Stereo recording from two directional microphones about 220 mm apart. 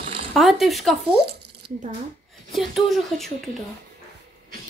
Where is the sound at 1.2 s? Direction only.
50° right (ahead or behind).